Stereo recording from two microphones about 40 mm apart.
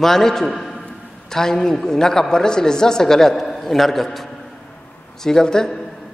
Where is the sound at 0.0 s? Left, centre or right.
Centre.